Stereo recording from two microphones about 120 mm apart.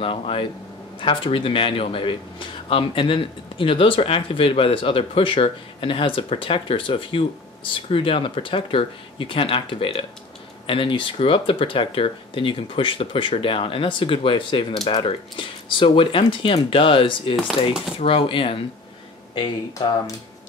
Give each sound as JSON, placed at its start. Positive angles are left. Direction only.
{"t": 0.0, "sound": "speech", "side_deg": 50}
{"t": 19.3, "sound": "speech", "side_deg": 40}